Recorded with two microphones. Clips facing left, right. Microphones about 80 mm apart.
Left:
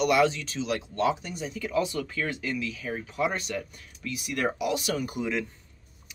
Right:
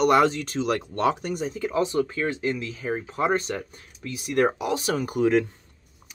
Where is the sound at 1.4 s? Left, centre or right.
Right.